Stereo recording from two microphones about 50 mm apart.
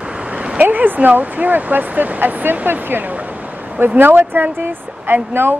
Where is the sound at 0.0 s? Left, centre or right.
Right.